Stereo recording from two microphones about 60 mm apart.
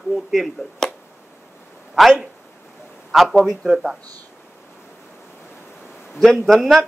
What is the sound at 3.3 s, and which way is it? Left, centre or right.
Speech, centre.